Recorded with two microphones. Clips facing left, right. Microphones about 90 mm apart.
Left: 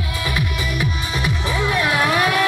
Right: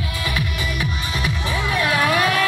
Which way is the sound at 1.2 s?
15° left (ahead or behind).